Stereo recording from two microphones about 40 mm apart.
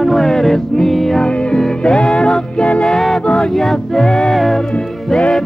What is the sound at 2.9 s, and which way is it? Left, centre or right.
Music, centre.